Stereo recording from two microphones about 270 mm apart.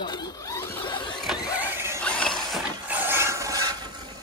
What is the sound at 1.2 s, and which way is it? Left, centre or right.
Vehicle, centre.